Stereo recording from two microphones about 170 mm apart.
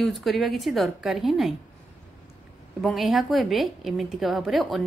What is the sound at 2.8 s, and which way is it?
A woman's voice, centre (ahead or behind).